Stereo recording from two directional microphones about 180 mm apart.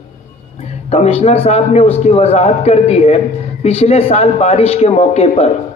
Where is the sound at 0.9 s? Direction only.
35° left (ahead or behind).